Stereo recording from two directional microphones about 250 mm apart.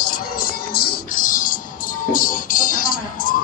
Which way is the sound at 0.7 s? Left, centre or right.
Left.